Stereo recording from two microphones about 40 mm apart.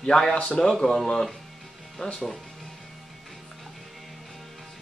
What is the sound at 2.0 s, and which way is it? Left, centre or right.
Speech, left.